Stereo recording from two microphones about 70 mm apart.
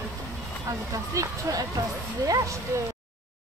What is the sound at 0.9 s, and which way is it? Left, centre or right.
Speech, right.